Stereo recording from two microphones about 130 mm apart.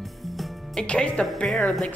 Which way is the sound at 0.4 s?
5° left (ahead or behind).